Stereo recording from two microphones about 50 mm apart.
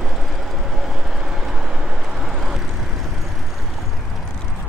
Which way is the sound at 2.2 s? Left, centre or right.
Centre.